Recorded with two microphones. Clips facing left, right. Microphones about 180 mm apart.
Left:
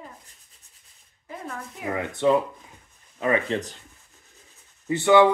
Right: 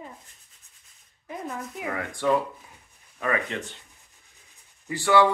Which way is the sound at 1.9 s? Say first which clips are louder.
Left 4 dB; 20° left (ahead or behind).